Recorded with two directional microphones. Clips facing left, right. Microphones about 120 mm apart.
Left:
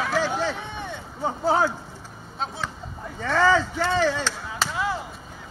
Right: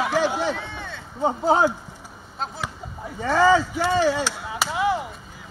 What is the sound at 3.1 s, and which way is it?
Speech, 15° right (ahead or behind).